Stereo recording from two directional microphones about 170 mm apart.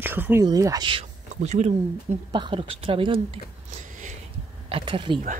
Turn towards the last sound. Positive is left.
turn(degrees=-30)  # may be behind; listen again after turning